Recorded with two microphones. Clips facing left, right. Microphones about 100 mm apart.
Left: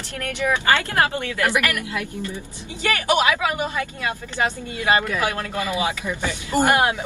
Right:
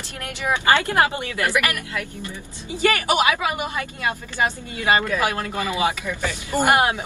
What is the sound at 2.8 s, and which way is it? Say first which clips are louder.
Speech: right 1 dB; 15° right (ahead or behind).